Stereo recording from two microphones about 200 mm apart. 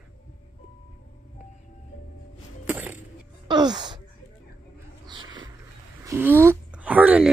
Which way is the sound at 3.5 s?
20° right (ahead or behind).